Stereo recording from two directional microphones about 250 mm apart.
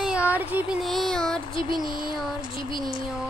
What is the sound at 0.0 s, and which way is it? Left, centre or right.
Child singing, centre.